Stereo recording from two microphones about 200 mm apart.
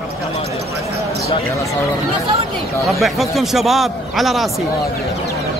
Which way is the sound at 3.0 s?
Centre (ahead or behind).